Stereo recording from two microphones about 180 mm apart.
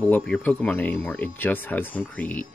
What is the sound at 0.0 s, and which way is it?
Speech, 10° left (ahead or behind).